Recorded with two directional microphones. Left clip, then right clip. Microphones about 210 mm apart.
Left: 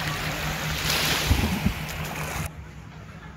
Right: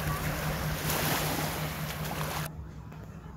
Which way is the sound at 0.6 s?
15° right (ahead or behind).